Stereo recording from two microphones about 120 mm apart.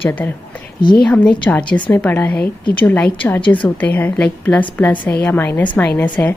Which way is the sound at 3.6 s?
15° left (ahead or behind).